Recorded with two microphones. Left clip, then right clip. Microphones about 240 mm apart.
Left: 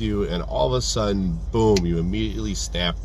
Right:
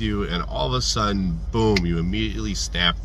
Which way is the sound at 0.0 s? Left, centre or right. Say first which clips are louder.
Left 1 dB; right.